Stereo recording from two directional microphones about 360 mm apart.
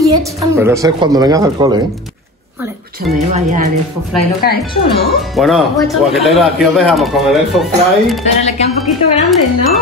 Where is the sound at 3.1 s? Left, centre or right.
Centre.